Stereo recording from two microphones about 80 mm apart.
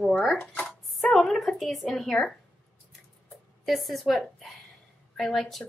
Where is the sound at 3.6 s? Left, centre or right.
Centre.